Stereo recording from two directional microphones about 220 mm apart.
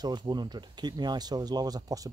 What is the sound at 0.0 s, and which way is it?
Speech, 20° right (ahead or behind).